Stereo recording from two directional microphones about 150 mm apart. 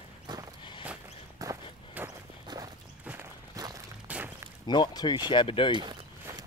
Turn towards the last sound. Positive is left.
turn(degrees=-30)  # may be behind; listen again after turning